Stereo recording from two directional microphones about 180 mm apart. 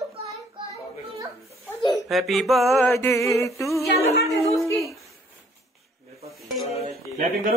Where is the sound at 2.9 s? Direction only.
15° left (ahead or behind).